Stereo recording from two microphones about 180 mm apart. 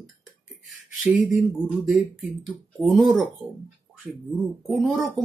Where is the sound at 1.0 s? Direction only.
5° right (ahead or behind).